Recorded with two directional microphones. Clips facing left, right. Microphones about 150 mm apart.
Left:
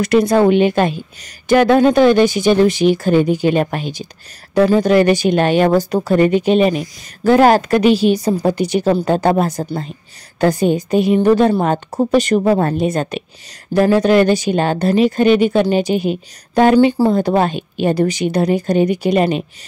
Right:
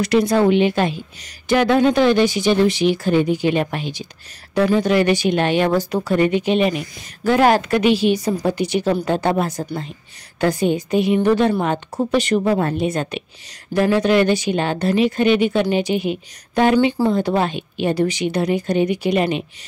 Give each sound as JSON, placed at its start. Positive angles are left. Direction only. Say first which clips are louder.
{"t": 0.0, "sound": "speech", "louder": "left 3 dB", "side_deg": 50}